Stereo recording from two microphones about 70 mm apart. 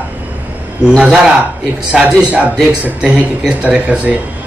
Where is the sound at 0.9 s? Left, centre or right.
Centre.